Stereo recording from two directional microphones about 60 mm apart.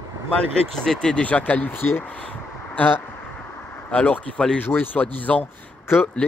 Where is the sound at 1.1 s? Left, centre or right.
Left.